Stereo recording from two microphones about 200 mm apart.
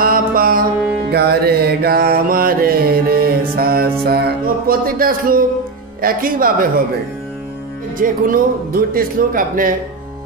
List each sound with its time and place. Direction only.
0.0 s music: 45° right (ahead or behind)
1.1 s mantra: 50° right (ahead or behind)
5.9 s speech: 45° right (ahead or behind)
8.0 s speech: 45° right (ahead or behind)